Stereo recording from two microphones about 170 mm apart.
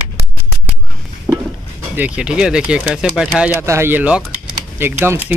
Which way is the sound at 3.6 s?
15° right (ahead or behind).